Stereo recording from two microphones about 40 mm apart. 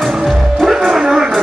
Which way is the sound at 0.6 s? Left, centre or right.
Centre.